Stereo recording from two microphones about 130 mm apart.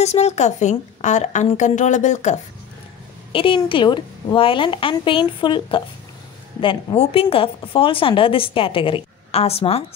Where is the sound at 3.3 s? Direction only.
45° left (ahead or behind).